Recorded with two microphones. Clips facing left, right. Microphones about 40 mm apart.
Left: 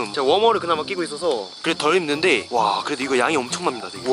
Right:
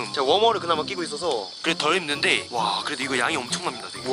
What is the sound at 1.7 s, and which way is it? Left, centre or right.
Speech, centre.